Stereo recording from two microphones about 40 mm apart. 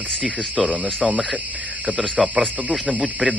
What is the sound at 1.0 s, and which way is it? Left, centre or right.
A man's voice, right.